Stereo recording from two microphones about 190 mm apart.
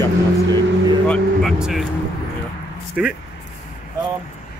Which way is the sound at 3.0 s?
5° right (ahead or behind).